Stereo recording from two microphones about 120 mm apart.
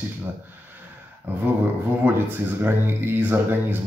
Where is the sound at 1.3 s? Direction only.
15° right (ahead or behind).